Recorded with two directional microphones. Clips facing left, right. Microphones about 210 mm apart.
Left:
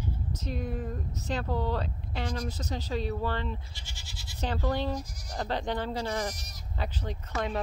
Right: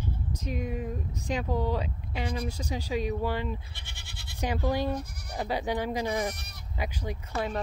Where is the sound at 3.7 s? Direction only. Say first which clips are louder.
Even; 60° right (ahead or behind).